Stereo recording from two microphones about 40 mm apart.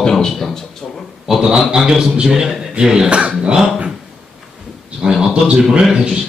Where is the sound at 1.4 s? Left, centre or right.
Centre.